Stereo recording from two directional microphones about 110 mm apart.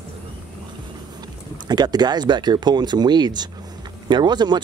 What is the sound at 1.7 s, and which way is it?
Speech, 40° right (ahead or behind).